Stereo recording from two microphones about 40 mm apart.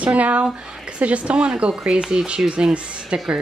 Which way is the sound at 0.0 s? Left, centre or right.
Right.